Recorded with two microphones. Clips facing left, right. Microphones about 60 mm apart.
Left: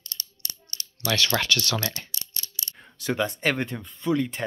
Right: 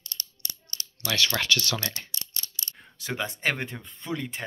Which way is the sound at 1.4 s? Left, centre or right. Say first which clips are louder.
Even; centre.